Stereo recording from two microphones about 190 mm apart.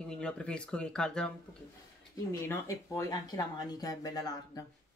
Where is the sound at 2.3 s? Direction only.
15° left (ahead or behind).